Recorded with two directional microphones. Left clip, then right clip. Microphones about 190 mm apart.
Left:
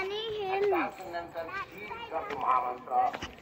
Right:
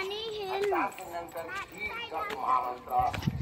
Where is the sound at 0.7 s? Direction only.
30° right (ahead or behind).